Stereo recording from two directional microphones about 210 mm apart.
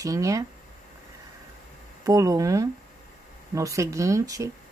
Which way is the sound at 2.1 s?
15° right (ahead or behind).